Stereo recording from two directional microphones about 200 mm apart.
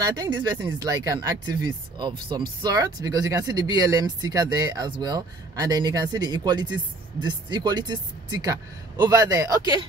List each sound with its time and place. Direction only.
0.0 s speech: 20° right (ahead or behind)